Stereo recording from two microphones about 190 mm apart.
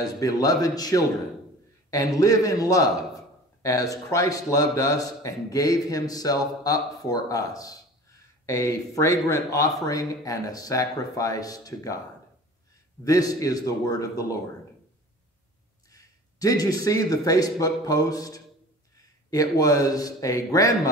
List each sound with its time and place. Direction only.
0.0 s a man's voice: 20° left (ahead or behind)
13.0 s a man's voice: 20° left (ahead or behind)
15.9 s a sound: 15° left (ahead or behind)
17.1 s a man's voice: 20° left (ahead or behind)